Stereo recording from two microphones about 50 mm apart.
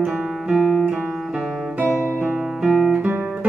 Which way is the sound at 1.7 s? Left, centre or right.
Right.